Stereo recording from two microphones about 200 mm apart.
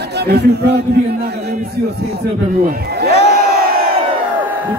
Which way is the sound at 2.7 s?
50° right (ahead or behind).